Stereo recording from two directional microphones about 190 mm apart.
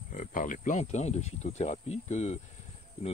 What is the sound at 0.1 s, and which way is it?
Speech, 45° left (ahead or behind).